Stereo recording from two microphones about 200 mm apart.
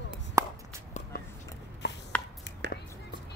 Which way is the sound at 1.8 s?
55° left (ahead or behind).